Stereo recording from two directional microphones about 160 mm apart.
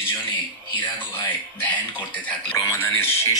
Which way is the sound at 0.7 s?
30° left (ahead or behind).